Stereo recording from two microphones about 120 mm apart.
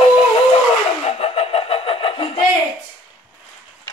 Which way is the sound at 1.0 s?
55° left (ahead or behind).